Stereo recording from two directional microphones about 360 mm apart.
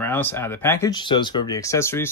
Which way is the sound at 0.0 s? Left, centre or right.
Centre.